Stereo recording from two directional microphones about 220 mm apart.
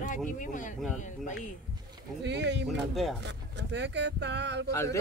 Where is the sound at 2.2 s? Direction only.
50° right (ahead or behind).